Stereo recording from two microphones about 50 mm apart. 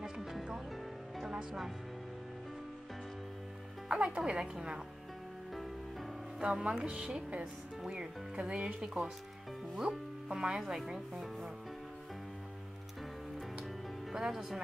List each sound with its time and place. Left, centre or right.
0.0 s music: centre
3.9 s speech: centre
6.4 s speech: centre
8.8 s speech: centre
10.6 s speech: centre
14.1 s speech: centre